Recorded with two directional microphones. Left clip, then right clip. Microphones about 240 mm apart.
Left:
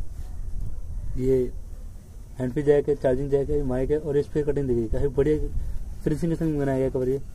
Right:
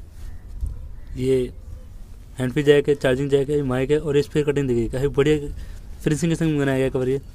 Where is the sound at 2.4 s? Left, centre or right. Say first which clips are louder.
Right 4 dB; right.